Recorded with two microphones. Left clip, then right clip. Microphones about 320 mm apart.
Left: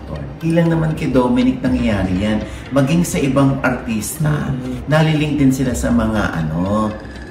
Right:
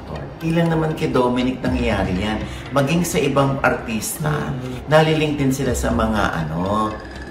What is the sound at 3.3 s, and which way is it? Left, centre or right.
A man's voice, centre.